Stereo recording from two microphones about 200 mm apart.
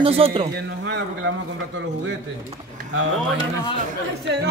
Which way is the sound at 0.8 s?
65° right (ahead or behind).